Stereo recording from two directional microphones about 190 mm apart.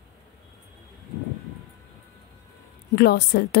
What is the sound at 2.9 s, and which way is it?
Speech, 60° left (ahead or behind).